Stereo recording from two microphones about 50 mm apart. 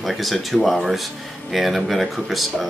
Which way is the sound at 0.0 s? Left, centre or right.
Centre.